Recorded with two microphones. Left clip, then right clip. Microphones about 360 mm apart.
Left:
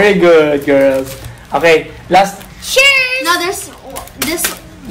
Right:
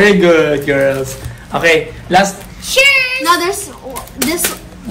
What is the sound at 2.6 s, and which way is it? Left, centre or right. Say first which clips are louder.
Child singing: left 1 dB; centre.